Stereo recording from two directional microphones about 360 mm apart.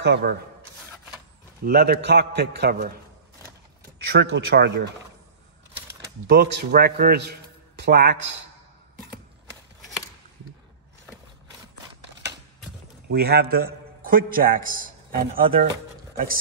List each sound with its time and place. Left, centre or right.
0.0 s a man's voice: right
1.6 s a man's voice: right
4.1 s a man's voice: right
6.2 s a man's voice: right
13.1 s a man's voice: right